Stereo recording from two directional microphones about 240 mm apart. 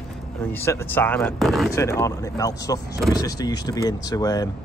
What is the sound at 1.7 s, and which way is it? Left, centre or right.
Speech, centre.